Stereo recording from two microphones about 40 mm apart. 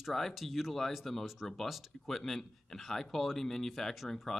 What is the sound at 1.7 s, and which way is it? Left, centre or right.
Speech, centre.